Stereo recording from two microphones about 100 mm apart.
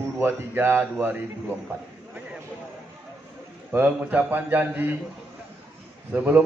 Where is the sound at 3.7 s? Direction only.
15° right (ahead or behind).